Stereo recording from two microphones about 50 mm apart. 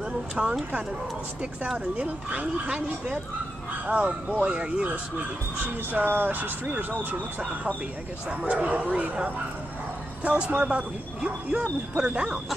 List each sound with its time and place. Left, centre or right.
0.4 s speech: centre
2.0 s speech: right
5.9 s speech: right
8.3 s speech: right
10.2 s speech: right